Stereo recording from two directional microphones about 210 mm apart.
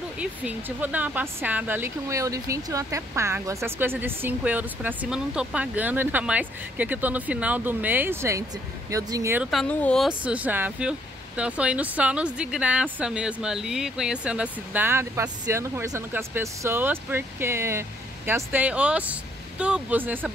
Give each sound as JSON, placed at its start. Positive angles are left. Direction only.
{"t": 0.2, "sound": "speech", "side_deg": -5}
{"t": 9.5, "sound": "speech", "side_deg": 5}